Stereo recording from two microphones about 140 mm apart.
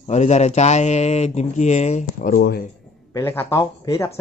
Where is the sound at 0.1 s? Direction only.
55° left (ahead or behind).